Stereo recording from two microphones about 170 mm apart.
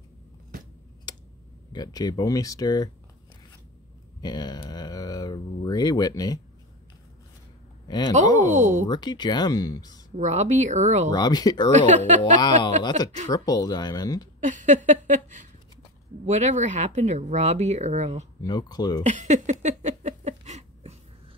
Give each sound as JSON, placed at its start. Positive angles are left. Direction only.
{"t": 1.7, "sound": "speech", "side_deg": 20}
{"t": 4.2, "sound": "a sound", "side_deg": 25}
{"t": 8.5, "sound": "speech", "side_deg": -50}
{"t": 8.8, "sound": "speech", "side_deg": 25}
{"t": 10.1, "sound": "speech", "side_deg": -45}
{"t": 11.1, "sound": "speech", "side_deg": 25}
{"t": 11.7, "sound": "speech", "side_deg": -45}
{"t": 12.2, "sound": "speech", "side_deg": 25}
{"t": 14.4, "sound": "speech", "side_deg": -50}
{"t": 18.4, "sound": "speech", "side_deg": 25}
{"t": 19.0, "sound": "a sound", "side_deg": -45}